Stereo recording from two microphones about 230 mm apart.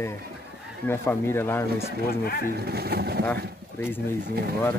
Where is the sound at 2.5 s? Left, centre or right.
Right.